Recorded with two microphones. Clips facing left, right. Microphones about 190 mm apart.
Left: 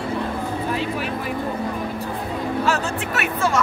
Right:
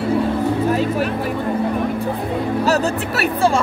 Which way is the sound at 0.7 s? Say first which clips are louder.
Right 6 dB; 45° right (ahead or behind).